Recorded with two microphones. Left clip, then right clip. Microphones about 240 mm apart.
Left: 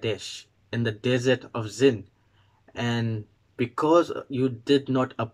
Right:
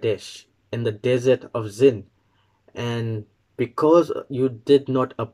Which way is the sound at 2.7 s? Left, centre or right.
Centre.